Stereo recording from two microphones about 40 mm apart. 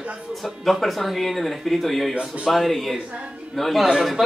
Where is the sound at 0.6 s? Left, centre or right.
Centre.